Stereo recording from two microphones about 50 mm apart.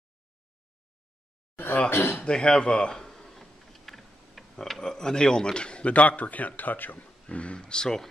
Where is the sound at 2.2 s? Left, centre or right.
Centre.